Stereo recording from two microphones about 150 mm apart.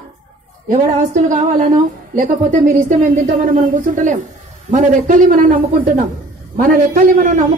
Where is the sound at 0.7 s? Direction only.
65° right (ahead or behind).